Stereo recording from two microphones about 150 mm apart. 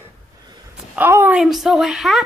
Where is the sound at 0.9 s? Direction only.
15° right (ahead or behind).